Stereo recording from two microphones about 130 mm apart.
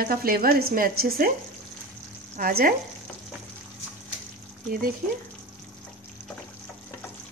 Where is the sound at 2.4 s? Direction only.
90° right.